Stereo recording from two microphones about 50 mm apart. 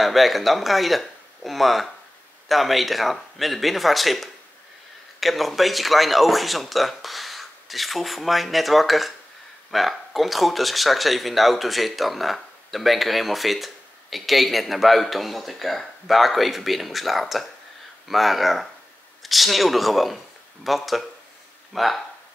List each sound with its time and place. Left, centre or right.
0.0 s speech: centre